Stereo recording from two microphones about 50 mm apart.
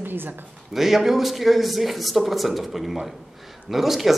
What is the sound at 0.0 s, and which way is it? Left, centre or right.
Speech, right.